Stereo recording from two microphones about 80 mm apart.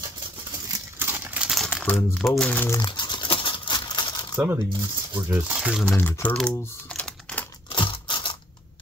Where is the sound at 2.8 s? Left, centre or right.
Left.